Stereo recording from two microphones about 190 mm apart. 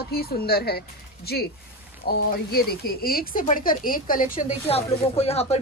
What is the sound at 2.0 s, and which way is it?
A woman's voice, 55° left (ahead or behind).